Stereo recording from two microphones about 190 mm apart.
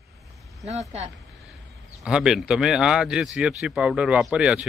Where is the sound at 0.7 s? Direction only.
35° right (ahead or behind).